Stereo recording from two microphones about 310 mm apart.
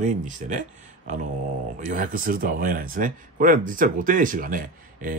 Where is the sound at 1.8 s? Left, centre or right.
Right.